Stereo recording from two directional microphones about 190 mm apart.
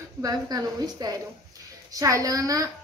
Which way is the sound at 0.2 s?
20° right (ahead or behind).